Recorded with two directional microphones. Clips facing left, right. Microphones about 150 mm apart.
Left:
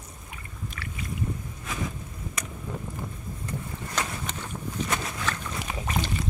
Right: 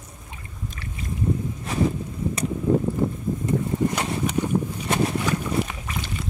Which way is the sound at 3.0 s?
25° right (ahead or behind).